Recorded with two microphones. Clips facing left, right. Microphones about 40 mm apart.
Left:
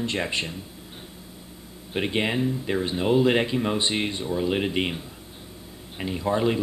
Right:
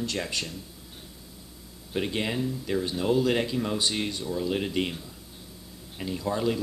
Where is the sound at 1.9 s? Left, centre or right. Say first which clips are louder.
Left 4 dB; left.